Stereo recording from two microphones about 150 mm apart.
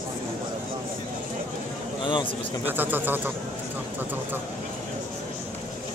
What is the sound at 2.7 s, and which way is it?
Speech, 15° right (ahead or behind).